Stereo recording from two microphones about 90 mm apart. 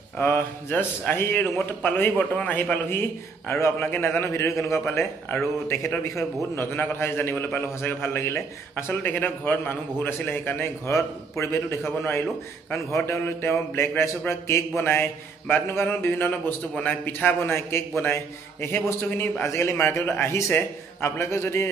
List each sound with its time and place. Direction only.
0.2 s a man's voice: 30° left (ahead or behind)